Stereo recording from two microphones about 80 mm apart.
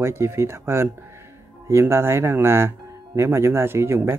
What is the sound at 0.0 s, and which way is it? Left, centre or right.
Speech, right.